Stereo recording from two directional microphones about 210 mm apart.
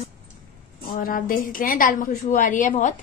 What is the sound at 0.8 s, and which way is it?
A woman's voice, 40° left (ahead or behind).